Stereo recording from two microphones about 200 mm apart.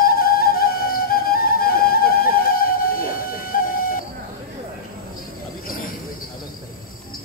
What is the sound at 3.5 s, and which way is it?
Flute, 45° left (ahead or behind).